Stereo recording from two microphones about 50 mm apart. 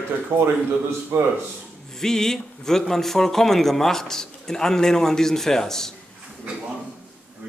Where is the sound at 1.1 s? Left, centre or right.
Right.